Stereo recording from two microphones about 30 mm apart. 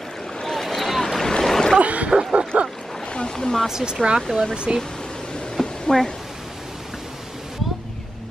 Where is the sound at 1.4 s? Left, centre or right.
Centre.